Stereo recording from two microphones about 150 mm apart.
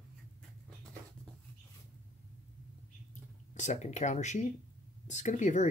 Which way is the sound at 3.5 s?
50° left (ahead or behind).